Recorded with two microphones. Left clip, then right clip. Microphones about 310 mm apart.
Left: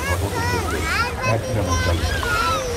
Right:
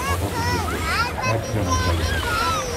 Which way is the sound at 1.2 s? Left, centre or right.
Centre.